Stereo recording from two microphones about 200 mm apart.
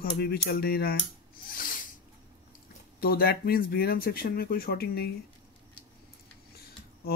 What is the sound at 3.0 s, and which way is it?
Speech, 50° left (ahead or behind).